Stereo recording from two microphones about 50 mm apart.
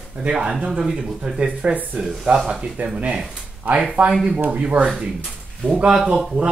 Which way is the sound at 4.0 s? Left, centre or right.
Right.